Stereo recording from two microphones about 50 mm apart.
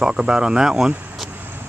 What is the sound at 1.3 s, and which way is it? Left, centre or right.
Vehicle, right.